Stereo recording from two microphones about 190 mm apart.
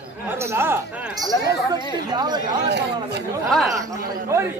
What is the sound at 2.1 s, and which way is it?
Speech, 20° right (ahead or behind).